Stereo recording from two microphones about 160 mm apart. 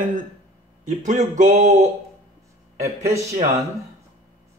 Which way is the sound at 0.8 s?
50° right (ahead or behind).